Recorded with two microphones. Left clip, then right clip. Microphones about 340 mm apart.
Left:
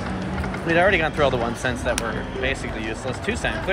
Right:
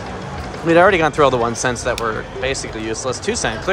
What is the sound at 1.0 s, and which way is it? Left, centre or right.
Speech, right.